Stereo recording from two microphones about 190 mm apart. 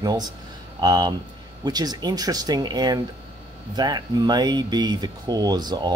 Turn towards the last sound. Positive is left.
turn(degrees=-20)  # may be behind; listen again after turning